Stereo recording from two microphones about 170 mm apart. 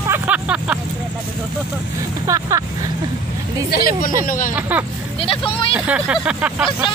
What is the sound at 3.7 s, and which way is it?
Speech, 60° left (ahead or behind).